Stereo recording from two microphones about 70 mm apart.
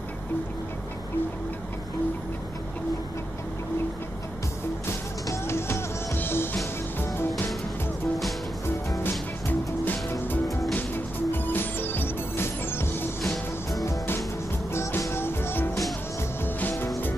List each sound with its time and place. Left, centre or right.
5.2 s music: left
8.6 s music: left
13.2 s music: centre
13.8 s music: left